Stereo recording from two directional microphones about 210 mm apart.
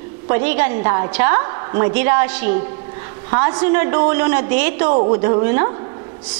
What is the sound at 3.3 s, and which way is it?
A woman's voice, 25° right (ahead or behind).